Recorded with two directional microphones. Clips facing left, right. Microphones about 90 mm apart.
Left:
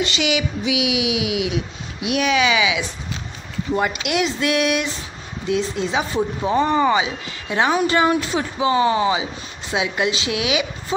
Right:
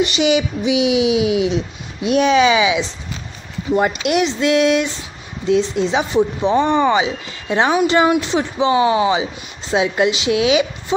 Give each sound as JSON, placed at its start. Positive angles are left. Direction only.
{"t": 0.0, "sound": "speech", "side_deg": -25}